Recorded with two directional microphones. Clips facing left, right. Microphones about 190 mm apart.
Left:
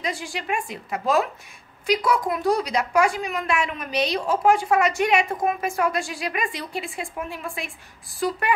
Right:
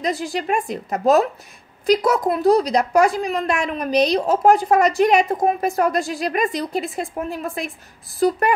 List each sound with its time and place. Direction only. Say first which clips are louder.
0.0 s a woman's voice: right 7 dB; 40° right (ahead or behind)